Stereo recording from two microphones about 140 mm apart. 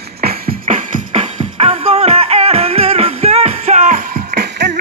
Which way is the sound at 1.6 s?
45° right (ahead or behind).